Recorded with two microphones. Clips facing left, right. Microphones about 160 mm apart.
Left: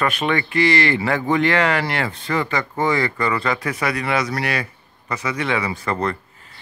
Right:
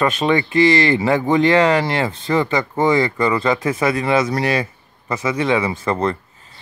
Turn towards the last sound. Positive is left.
turn(degrees=-25)  # may be behind; listen again after turning